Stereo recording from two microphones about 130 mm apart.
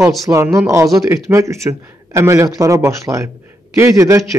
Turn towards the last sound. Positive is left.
turn(degrees=-25)  # may be behind; listen again after turning